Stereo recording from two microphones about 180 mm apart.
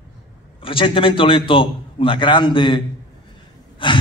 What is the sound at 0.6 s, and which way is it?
Speech, 30° left (ahead or behind).